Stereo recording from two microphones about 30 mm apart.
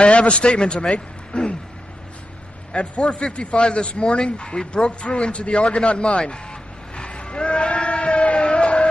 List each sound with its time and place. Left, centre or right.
0.0 s a man's voice: left
2.7 s speech: left
5.9 s vehicle: left
8.3 s a sound: left